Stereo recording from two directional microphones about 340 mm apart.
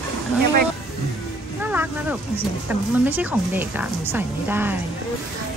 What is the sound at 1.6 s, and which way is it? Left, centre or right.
Speech, centre.